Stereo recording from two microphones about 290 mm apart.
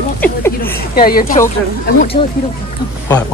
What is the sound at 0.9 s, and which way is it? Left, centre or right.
Speech, left.